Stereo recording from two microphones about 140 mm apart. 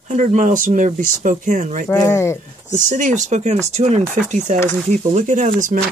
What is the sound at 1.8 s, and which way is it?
Speech, 20° left (ahead or behind).